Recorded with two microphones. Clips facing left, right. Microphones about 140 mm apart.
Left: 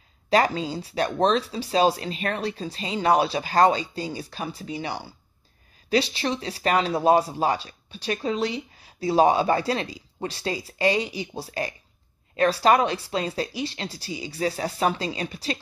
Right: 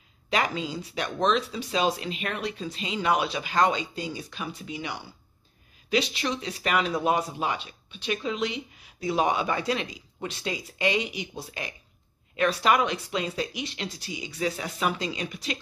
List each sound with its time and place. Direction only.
0.3 s speech: 35° left (ahead or behind)